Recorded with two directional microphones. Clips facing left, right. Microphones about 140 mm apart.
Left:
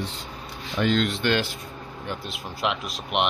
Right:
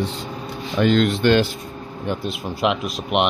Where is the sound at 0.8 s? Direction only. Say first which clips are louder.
Right 6 dB; 60° right (ahead or behind).